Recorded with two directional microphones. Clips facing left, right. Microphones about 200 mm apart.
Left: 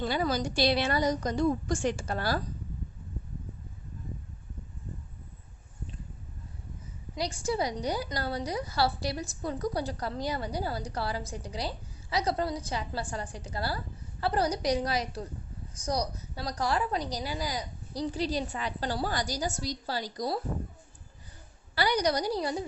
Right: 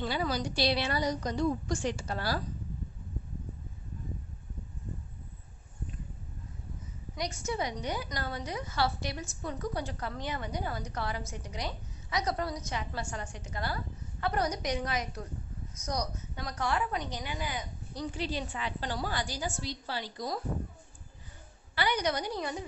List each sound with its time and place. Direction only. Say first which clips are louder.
0.0 s a woman's voice: left 3 dB; 45° left (ahead or behind)
7.2 s a woman's voice: left 4 dB; 30° left (ahead or behind)
21.7 s a woman's voice: left 3 dB; 35° left (ahead or behind)